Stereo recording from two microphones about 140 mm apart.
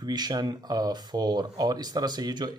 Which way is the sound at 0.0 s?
30° right (ahead or behind).